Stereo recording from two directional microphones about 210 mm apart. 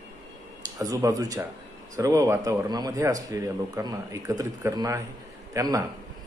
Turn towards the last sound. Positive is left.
turn(degrees=-15)  # may be behind; listen again after turning